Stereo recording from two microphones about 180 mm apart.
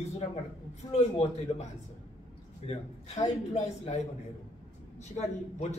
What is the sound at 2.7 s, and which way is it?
A man's voice, 40° left (ahead or behind).